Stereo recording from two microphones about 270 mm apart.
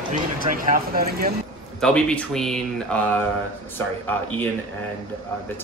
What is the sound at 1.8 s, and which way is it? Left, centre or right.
Speech, centre.